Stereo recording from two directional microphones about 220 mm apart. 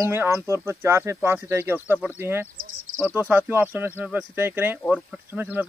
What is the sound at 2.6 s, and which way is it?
Insect, 65° right (ahead or behind).